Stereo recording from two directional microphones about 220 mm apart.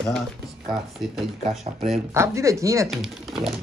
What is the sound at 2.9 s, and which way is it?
Speech, centre (ahead or behind).